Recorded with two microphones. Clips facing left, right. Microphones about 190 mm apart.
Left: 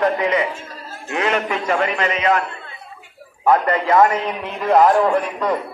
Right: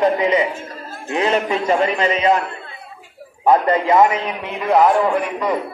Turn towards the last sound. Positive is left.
turn(degrees=-5)  # may be behind; listen again after turning